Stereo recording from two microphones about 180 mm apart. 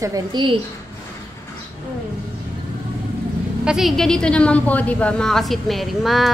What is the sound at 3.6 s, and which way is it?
A woman's voice, centre (ahead or behind).